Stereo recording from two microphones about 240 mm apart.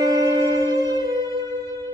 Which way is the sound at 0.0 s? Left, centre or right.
Centre.